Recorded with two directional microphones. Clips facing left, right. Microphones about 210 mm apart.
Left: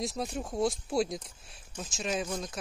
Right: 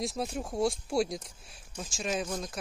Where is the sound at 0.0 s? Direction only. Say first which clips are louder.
Right 1 dB; centre (ahead or behind).